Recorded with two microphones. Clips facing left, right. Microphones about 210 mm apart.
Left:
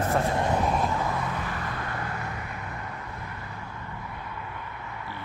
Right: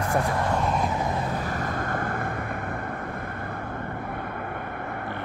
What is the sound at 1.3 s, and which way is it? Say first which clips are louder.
Vehicle: right 4 dB; 40° right (ahead or behind).